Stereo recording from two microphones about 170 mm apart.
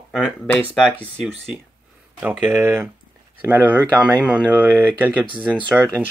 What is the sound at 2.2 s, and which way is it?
Speech, 10° right (ahead or behind).